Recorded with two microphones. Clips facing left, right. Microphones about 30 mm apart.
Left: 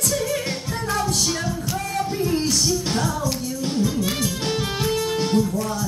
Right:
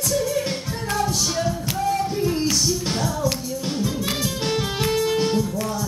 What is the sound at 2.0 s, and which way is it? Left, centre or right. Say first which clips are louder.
Music: even; centre.